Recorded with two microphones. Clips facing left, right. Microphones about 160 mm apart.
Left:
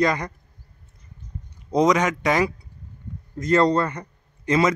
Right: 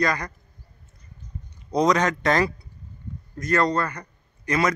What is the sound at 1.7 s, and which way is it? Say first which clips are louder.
Speech: left 2 dB; 20° left (ahead or behind).